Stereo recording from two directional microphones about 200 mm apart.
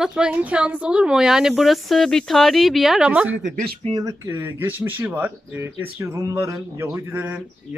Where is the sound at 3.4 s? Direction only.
40° right (ahead or behind).